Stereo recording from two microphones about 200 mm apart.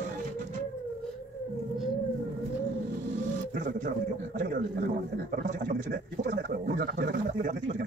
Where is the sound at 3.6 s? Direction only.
40° right (ahead or behind).